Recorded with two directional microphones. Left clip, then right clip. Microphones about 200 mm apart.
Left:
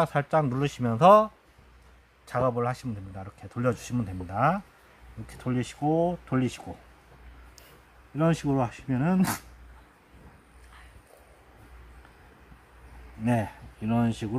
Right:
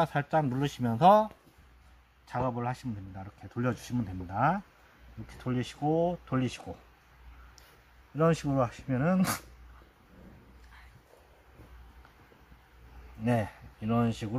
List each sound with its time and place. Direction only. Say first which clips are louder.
0.0 s speech: left 3 dB; 15° left (ahead or behind); by 6.8 s centre (ahead or behind)
8.2 s speech: left 1 dB; 5° right (ahead or behind)
13.2 s speech: left 2 dB; 5° right (ahead or behind)